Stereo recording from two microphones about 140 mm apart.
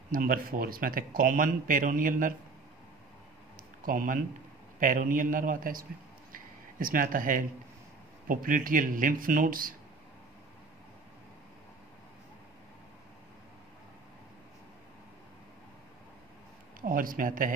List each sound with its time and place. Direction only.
0.1 s speech: 90° right; by 2.3 s 75° right (ahead or behind)
3.8 s speech: 75° right (ahead or behind)
6.3 s a sound: 80° right
8.3 s speech: 75° right (ahead or behind)
16.8 s speech: 80° right